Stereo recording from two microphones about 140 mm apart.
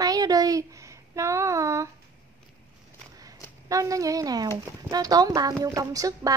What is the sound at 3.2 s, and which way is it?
Speech, 25° right (ahead or behind).